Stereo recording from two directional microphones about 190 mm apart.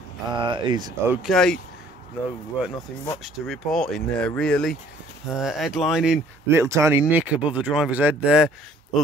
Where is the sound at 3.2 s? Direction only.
Centre (ahead or behind).